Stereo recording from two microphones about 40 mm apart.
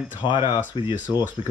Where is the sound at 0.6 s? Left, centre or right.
Right.